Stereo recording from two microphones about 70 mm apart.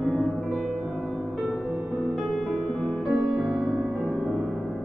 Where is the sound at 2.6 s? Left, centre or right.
Centre.